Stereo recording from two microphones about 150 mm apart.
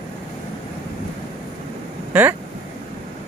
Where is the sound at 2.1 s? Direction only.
10° right (ahead or behind).